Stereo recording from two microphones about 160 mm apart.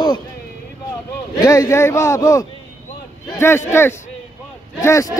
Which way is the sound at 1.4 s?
20° left (ahead or behind).